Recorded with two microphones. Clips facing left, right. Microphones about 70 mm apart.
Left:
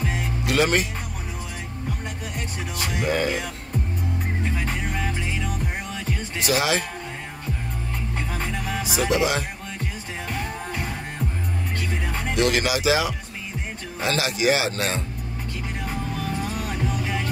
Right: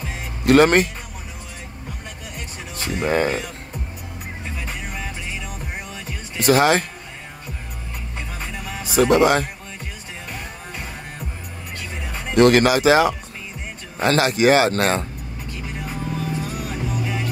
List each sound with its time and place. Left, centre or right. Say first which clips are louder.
0.5 s speech: right 8 dB; right
2.8 s music: right 4 dB; right
6.4 s speech: right 7 dB; right
8.8 s speech: right 8 dB; right
12.4 s speech: right 9 dB; right
15.8 s music: right 3 dB; centre